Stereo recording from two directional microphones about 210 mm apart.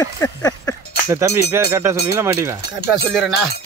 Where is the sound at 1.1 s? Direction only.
15° right (ahead or behind).